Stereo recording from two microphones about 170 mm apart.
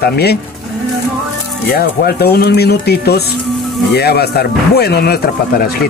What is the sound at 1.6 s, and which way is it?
Speech, 65° left (ahead or behind).